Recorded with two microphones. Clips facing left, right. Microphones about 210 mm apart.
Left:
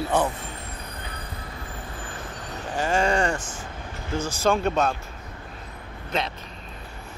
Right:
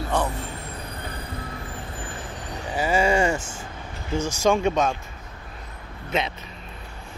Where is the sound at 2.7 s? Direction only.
10° right (ahead or behind).